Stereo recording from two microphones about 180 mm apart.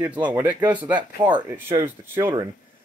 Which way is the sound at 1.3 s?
25° right (ahead or behind).